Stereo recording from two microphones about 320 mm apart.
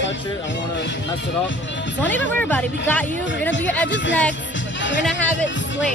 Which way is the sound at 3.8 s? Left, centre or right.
Left.